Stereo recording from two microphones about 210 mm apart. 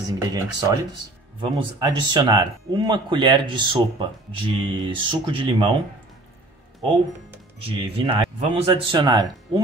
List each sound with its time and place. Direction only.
0.2 s speech: 15° right (ahead or behind)
7.6 s speech: 25° right (ahead or behind)